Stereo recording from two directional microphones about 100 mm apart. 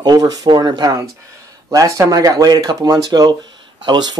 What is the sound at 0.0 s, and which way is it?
Speech, 40° right (ahead or behind).